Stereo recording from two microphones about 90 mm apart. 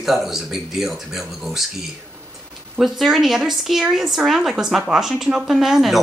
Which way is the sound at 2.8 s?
5° right (ahead or behind).